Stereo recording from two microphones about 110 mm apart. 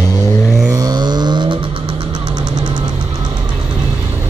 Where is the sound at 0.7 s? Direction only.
35° right (ahead or behind).